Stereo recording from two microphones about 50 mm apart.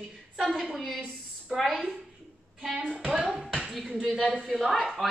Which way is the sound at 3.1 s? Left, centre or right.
Centre.